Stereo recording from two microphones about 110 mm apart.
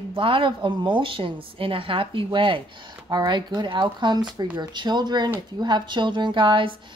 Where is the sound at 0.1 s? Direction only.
55° right (ahead or behind).